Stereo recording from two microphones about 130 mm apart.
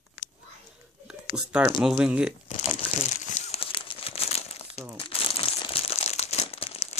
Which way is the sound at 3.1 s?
65° left (ahead or behind).